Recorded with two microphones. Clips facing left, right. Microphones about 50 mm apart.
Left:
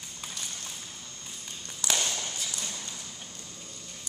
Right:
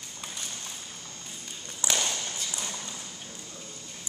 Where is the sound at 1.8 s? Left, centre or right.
Right.